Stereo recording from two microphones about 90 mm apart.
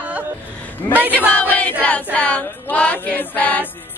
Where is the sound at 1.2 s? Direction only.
20° left (ahead or behind).